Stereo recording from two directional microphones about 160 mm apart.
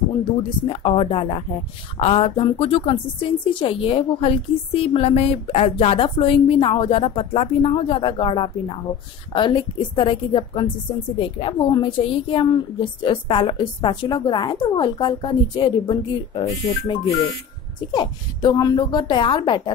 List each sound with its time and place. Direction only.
0.7 s a woman's voice: 35° left (ahead or behind)